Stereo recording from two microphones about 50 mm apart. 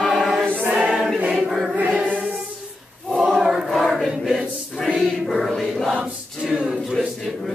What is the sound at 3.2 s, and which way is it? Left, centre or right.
Choir, centre.